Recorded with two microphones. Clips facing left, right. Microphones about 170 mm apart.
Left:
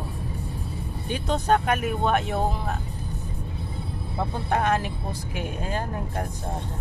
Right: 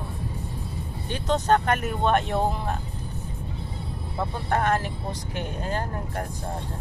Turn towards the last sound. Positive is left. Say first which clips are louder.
# left 1 dB
turn(degrees=15)  # may be behind; listen again after turning